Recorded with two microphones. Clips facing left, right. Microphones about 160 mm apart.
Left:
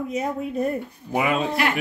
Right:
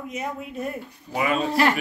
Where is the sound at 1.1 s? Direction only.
70° left (ahead or behind).